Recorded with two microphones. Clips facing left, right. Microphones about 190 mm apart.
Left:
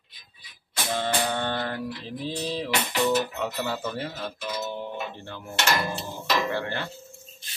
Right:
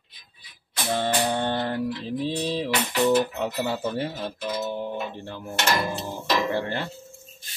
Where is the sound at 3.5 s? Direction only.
20° right (ahead or behind).